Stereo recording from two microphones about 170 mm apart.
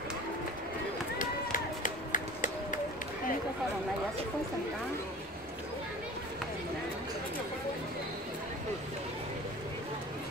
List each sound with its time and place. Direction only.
1.1 s run: 50° left (ahead or behind)